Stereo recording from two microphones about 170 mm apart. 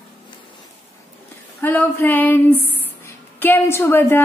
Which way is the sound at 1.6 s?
10° left (ahead or behind).